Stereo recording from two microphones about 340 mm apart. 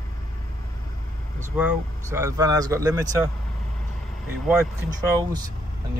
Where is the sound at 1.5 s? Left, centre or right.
Centre.